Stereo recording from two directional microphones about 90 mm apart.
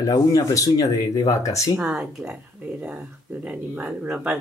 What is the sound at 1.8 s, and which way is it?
Speech, 10° right (ahead or behind).